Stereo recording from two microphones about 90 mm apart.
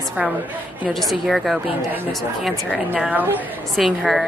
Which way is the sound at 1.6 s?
20° right (ahead or behind).